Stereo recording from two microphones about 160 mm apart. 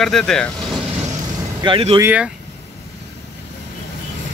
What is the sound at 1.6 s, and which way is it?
Speech, 35° right (ahead or behind).